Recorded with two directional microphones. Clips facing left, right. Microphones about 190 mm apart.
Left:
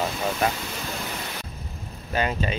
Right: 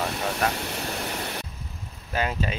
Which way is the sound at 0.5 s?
70° right (ahead or behind).